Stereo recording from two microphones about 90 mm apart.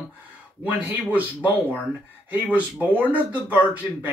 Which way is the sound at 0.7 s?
20° right (ahead or behind).